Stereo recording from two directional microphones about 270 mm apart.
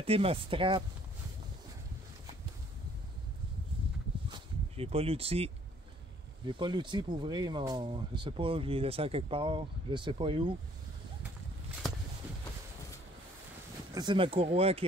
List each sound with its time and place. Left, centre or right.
0.0 s speech: right
4.3 s a sound: right
6.4 s speech: centre
13.9 s speech: centre